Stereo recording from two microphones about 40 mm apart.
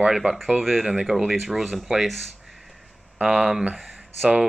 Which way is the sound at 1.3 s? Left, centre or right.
Centre.